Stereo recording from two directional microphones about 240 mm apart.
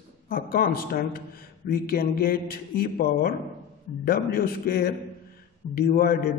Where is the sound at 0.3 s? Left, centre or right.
Left.